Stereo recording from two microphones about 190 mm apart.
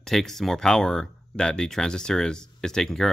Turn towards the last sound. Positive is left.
turn(degrees=5)  # may be behind; listen again after turning